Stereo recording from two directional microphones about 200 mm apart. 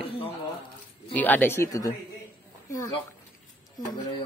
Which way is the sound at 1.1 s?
10° left (ahead or behind).